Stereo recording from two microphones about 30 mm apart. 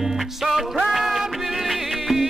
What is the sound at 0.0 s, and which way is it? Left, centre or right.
Music, centre.